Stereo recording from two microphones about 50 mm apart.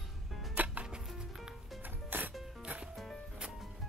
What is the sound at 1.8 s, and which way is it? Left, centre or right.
Music, right.